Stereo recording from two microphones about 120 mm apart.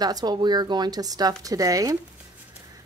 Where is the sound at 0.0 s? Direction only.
35° right (ahead or behind).